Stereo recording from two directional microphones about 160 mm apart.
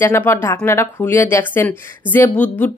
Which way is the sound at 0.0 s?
15° left (ahead or behind).